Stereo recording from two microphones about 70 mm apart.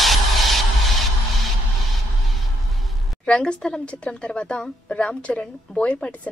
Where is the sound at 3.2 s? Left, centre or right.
Centre.